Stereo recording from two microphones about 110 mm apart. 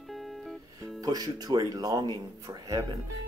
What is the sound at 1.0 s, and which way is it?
Speech, 35° right (ahead or behind).